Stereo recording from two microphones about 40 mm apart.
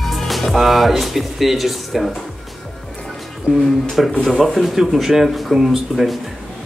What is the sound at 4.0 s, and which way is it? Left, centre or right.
A woman's voice, centre.